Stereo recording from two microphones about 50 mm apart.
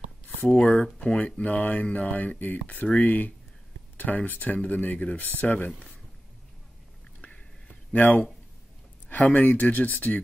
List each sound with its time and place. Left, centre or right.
0.5 s speech: left
5.7 s speech: left
7.9 s speech: left